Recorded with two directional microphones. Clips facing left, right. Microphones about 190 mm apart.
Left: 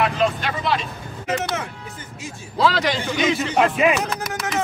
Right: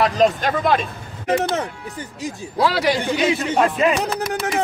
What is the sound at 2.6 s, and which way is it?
Speech, 10° right (ahead or behind).